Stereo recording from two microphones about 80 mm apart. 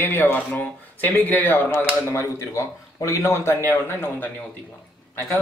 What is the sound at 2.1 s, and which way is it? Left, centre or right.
A man's voice, left.